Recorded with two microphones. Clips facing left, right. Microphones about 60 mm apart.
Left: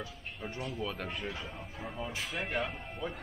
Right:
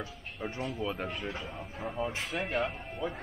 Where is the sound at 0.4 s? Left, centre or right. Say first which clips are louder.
Right 3 dB; right.